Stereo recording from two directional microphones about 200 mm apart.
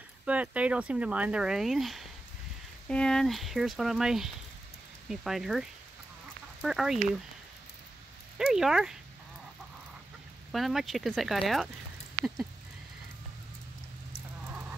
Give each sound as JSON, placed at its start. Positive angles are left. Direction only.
{"t": 0.2, "sound": "speech", "side_deg": -5}
{"t": 8.4, "sound": "speech", "side_deg": 0}
{"t": 10.5, "sound": "speech", "side_deg": 0}
{"t": 12.2, "sound": "a sound", "side_deg": -10}